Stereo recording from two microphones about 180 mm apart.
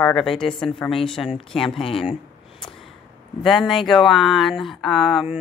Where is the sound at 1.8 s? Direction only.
30° left (ahead or behind).